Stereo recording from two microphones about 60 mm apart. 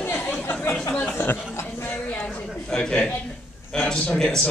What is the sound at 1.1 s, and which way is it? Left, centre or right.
Chatter, left.